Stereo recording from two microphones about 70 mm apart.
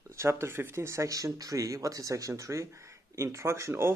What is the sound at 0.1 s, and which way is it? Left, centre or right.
Speech, right.